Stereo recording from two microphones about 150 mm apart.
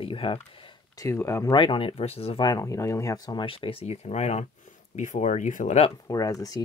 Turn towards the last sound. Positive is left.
turn(degrees=25)  # may be behind; listen again after turning